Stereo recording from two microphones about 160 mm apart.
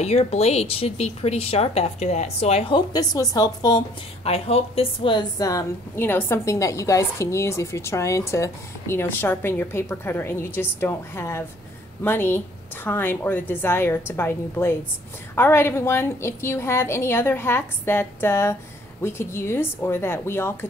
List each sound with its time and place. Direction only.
0.0 s speech: 40° left (ahead or behind); by 3.8 s 25° left (ahead or behind)
4.2 s a woman's voice: 40° left (ahead or behind); by 20.5 s 15° left (ahead or behind)